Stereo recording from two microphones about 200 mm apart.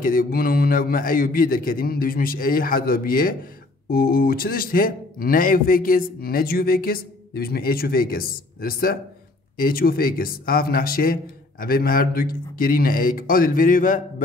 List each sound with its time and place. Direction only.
0.0 s speech: 45° left (ahead or behind)